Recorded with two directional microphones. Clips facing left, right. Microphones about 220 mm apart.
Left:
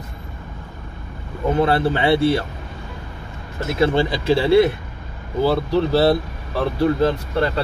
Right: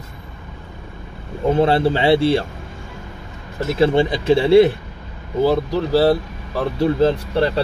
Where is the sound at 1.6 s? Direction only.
30° right (ahead or behind).